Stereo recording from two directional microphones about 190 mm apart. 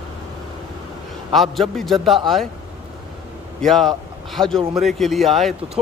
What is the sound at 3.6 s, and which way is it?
A man's voice, centre (ahead or behind).